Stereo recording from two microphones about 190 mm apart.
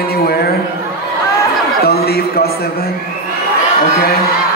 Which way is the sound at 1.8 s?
55° left (ahead or behind).